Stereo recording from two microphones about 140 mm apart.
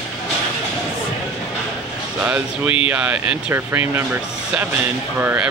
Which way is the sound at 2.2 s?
10° right (ahead or behind).